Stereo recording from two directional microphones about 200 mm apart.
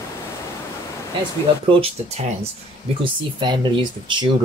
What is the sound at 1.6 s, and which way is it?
Speech, 25° right (ahead or behind).